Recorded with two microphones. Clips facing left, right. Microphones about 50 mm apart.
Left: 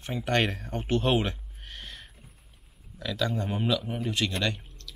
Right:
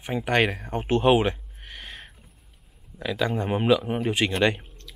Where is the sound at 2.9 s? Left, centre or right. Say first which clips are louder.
Right 4 dB; right.